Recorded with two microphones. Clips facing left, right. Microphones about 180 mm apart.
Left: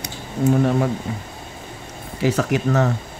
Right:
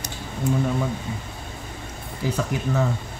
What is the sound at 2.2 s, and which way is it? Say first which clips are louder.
Speech: left 6 dB; 75° left (ahead or behind).